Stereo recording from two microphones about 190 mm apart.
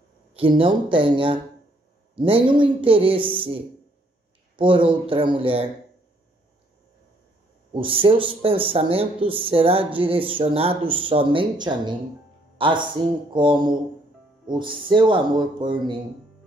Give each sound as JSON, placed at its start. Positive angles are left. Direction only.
{"t": 0.3, "sound": "speech", "side_deg": -30}
{"t": 7.7, "sound": "a man's voice", "side_deg": -30}